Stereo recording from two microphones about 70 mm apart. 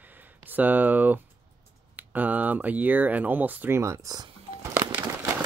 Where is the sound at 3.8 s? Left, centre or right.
Right.